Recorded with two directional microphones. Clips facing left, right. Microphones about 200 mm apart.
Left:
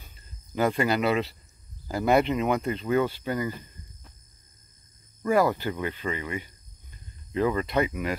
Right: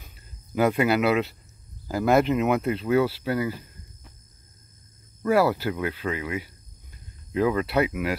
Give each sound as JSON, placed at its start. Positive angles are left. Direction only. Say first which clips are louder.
{"t": 0.0, "sound": "cricket", "louder": "right 2 dB", "side_deg": -5}
{"t": 1.9, "sound": "speech", "louder": "right 2 dB", "side_deg": -5}
{"t": 5.2, "sound": "speech", "louder": "right 2 dB", "side_deg": -5}